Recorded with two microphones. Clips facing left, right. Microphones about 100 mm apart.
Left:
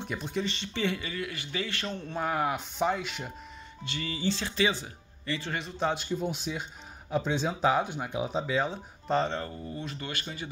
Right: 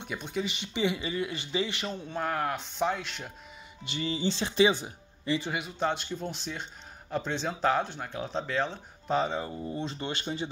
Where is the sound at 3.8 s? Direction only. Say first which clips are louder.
Right 3 dB; 20° right (ahead or behind).